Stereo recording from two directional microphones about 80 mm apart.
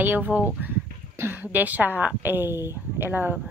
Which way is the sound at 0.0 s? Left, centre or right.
Right.